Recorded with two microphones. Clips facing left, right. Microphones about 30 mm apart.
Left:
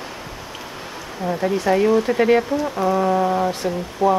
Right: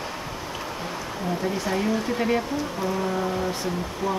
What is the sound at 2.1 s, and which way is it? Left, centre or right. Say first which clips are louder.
Speech: left 7 dB; left.